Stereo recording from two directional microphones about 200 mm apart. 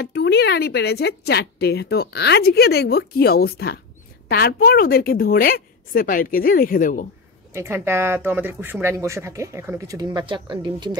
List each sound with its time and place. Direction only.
0.0 s speech: 55° left (ahead or behind)
7.5 s speech: 10° right (ahead or behind)